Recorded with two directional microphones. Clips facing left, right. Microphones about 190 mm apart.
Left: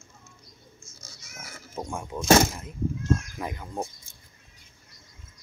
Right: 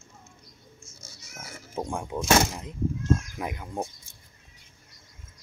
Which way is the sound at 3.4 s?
10° right (ahead or behind).